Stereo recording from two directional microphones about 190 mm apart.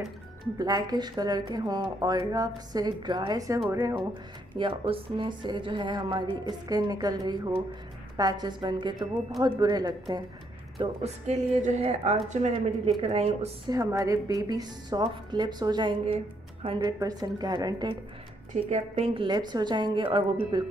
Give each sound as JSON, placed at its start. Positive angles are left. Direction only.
{"t": 0.6, "sound": "speech", "side_deg": -20}
{"t": 4.6, "sound": "speech", "side_deg": -25}
{"t": 10.8, "sound": "a woman's voice", "side_deg": -35}
{"t": 13.7, "sound": "speech", "side_deg": -20}
{"t": 18.5, "sound": "speech", "side_deg": -35}